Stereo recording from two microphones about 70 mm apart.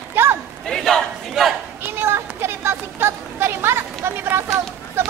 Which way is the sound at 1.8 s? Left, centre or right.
Right.